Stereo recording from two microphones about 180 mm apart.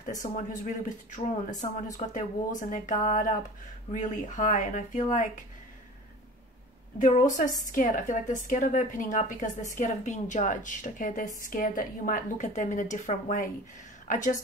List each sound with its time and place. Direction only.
0.0 s a woman's voice: 45° left (ahead or behind)
7.0 s a woman's voice: 45° left (ahead or behind)